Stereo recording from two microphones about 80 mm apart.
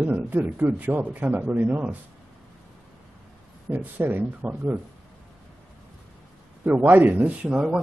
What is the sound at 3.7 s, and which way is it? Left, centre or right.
Speech, right.